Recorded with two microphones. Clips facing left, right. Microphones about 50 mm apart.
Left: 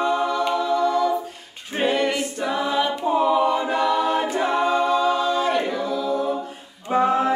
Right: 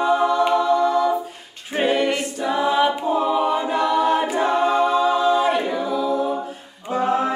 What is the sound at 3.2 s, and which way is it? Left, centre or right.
Choir, centre.